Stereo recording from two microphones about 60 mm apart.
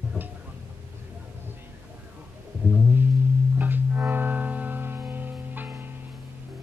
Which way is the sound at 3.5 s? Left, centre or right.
Right.